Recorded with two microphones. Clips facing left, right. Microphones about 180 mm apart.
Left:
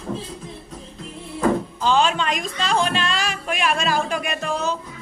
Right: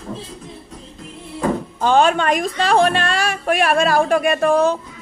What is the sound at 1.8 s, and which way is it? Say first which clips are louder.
A woman's voice: right 5 dB; 55° right (ahead or behind).